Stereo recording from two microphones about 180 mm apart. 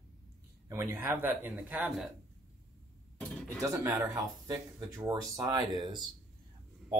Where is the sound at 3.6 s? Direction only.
20° right (ahead or behind).